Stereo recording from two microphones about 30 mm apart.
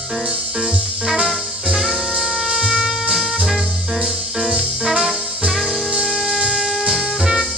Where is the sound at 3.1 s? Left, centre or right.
Centre.